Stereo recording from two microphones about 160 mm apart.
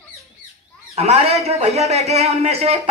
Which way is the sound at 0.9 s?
40° right (ahead or behind).